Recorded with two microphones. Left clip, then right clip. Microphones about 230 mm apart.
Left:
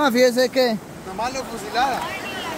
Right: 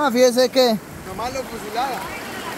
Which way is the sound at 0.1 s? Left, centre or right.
Centre.